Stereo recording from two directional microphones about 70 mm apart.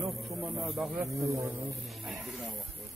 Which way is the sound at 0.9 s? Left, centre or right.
Right.